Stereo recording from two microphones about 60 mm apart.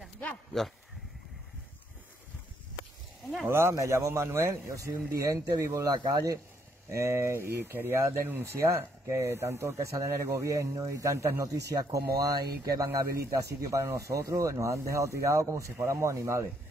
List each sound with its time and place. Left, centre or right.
0.2 s speech: left
3.4 s speech: right
6.9 s speech: right
8.5 s speech: right